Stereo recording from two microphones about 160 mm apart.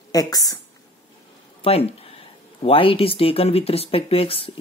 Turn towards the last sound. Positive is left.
turn(degrees=35)  # may be behind; listen again after turning